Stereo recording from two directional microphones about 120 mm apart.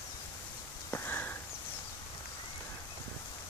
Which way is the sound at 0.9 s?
15° left (ahead or behind).